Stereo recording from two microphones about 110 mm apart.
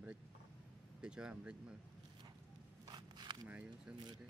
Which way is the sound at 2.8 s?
40° right (ahead or behind).